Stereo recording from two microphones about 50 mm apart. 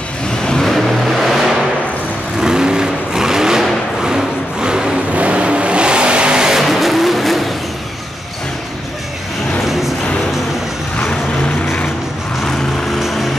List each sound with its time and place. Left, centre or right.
0.5 s vehicle: centre
0.7 s vehicle: centre
2.4 s vehicle: centre
5.1 s vehicle: right; by 7.4 s centre
9.7 s music: centre